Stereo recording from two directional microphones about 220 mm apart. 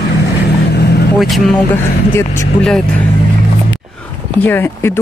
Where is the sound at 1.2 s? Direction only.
Centre (ahead or behind).